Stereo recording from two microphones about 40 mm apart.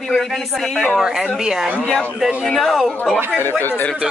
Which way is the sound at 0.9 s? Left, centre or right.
Centre.